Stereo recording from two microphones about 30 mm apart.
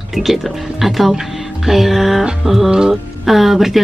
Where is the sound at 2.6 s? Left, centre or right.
Right.